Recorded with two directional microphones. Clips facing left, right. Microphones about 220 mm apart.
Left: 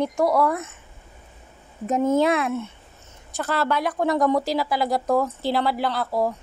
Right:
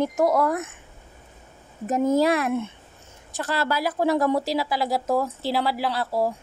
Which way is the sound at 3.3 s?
Centre (ahead or behind).